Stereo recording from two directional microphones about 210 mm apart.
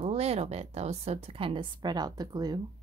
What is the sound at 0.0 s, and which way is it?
A woman's voice, 30° right (ahead or behind).